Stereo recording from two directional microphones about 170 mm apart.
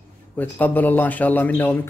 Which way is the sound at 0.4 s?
10° left (ahead or behind).